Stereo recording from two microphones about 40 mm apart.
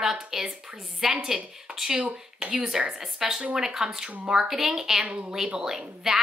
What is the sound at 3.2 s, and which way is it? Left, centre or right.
A woman's voice, centre.